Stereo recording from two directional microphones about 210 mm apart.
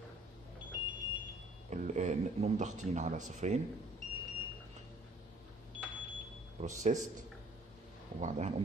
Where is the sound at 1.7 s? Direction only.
35° right (ahead or behind).